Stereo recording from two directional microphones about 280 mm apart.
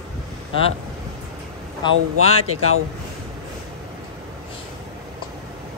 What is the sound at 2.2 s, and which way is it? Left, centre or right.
Speech, left.